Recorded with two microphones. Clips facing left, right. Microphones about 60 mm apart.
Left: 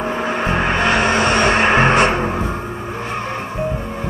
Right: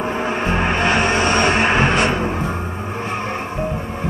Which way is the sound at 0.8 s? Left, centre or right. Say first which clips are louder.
Left 1 dB; left.